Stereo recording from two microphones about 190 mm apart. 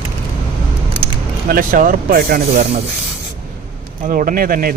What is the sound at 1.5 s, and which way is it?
Speech, 50° right (ahead or behind).